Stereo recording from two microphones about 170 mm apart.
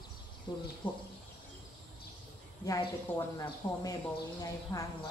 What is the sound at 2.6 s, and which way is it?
Speech, 20° left (ahead or behind).